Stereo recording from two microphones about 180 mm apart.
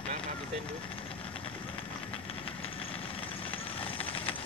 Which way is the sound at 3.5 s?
30° left (ahead or behind).